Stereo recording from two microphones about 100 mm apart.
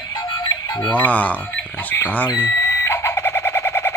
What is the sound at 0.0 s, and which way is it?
Music, 45° left (ahead or behind).